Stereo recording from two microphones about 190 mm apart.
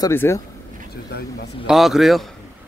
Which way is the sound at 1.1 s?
60° left (ahead or behind).